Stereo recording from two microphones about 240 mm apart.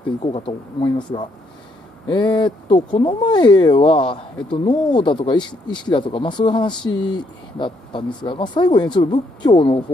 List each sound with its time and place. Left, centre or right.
0.2 s speech: left